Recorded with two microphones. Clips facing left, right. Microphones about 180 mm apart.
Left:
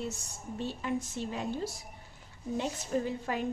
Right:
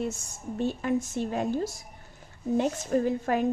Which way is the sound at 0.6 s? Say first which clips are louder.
Right 7 dB; 50° right (ahead or behind).